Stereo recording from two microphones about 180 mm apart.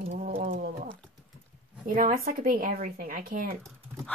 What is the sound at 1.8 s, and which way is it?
Speech, 50° right (ahead or behind).